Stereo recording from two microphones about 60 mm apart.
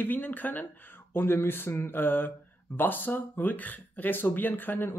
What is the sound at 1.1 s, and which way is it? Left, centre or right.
Speech, left.